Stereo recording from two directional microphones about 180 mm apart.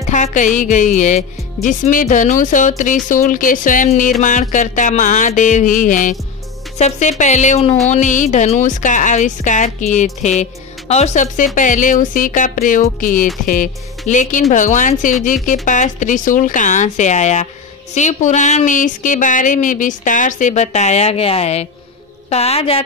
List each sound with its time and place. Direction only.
0.1 s a woman's voice: 45° left (ahead or behind)